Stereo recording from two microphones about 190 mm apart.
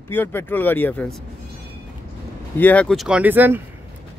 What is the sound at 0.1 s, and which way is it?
Speech, 10° left (ahead or behind).